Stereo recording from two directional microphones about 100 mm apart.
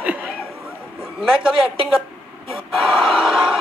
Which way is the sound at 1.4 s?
5° right (ahead or behind).